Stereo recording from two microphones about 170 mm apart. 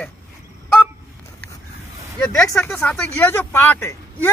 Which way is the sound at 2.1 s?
5° left (ahead or behind).